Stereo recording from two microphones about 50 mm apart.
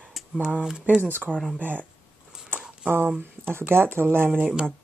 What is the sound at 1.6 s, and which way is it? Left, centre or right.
Speech, right.